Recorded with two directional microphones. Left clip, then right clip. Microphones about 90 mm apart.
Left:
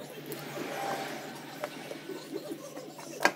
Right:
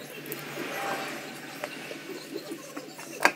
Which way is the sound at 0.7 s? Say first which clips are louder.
Right 2 dB; 20° right (ahead or behind).